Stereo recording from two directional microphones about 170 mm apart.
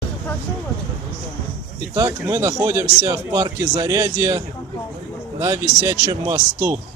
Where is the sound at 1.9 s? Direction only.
15° right (ahead or behind).